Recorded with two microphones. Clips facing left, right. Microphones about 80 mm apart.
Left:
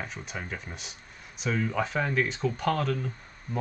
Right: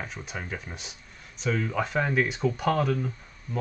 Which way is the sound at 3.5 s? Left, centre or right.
Left.